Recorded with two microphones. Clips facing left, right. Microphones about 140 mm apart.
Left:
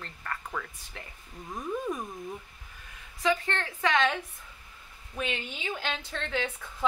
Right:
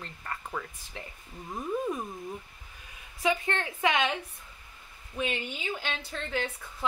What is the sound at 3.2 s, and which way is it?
Speech, 10° right (ahead or behind).